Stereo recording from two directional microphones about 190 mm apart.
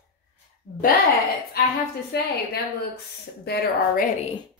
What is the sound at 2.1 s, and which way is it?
Speech, 60° left (ahead or behind).